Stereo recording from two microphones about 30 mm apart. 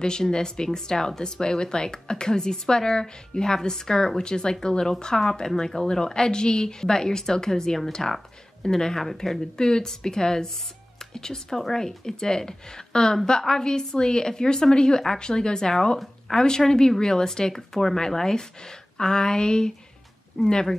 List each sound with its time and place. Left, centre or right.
0.3 s a woman's voice: left; by 9.4 s centre
9.6 s a woman's voice: left